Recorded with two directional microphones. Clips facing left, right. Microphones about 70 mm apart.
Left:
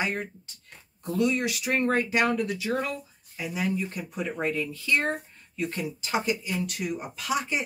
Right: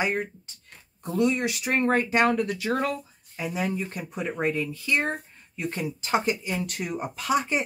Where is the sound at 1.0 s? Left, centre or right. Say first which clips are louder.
Right 1 dB; right.